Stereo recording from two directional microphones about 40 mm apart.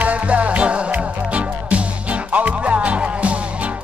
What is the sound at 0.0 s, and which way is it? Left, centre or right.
Music, right.